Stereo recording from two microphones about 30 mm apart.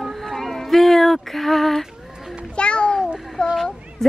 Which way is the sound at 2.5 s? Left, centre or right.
Left.